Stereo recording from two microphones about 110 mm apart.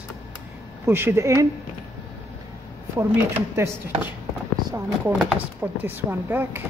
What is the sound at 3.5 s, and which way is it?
Speech, 25° right (ahead or behind).